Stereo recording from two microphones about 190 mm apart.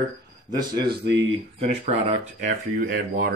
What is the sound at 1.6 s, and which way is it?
Speech, 35° right (ahead or behind).